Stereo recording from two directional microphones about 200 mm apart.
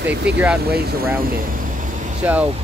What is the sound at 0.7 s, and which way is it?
Speech, 50° right (ahead or behind).